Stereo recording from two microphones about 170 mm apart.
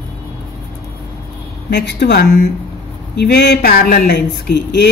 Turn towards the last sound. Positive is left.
turn(degrees=70)  # may be behind; listen again after turning